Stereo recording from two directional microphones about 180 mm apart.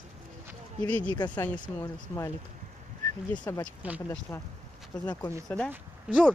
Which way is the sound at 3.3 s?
25° left (ahead or behind).